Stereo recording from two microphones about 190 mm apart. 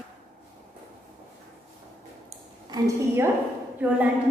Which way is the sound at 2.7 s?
15° right (ahead or behind).